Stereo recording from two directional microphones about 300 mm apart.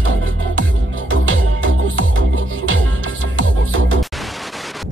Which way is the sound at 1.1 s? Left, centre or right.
Right.